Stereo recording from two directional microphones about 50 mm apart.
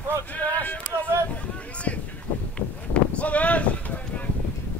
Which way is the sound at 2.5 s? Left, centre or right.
Left.